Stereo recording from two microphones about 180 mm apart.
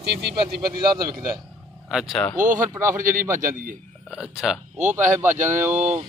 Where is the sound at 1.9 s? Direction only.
Centre (ahead or behind).